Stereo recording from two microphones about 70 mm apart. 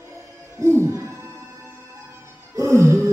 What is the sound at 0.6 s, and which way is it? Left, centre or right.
Music, right.